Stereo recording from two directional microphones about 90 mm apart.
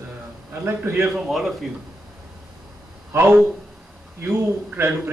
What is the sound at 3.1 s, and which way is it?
A man's voice, 25° right (ahead or behind).